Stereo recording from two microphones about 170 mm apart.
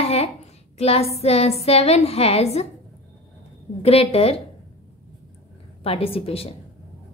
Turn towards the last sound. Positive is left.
turn(degrees=35)  # may be behind; listen again after turning